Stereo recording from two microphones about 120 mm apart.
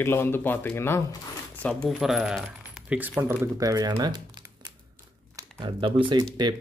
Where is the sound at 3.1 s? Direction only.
25° right (ahead or behind).